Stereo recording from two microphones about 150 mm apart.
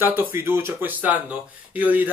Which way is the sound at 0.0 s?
15° right (ahead or behind).